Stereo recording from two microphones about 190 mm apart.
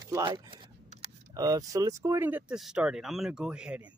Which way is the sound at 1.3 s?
20° right (ahead or behind).